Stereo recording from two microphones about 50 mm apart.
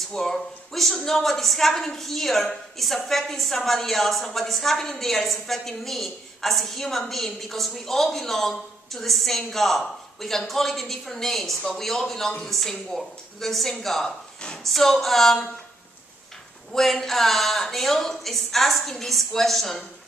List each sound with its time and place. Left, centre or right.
0.1 s a woman's voice: centre
16.7 s a woman's voice: centre